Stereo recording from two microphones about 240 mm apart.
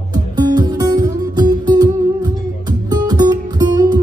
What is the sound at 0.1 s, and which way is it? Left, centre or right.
Music, centre.